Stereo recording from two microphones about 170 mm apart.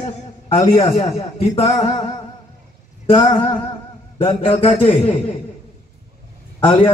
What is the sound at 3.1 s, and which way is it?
Speech, 30° left (ahead or behind).